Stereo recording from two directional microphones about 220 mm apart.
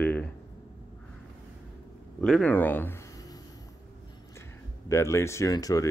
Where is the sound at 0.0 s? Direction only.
10° left (ahead or behind).